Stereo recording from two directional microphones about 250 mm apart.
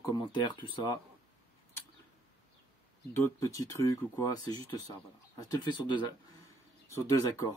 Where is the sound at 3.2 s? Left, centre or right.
Centre.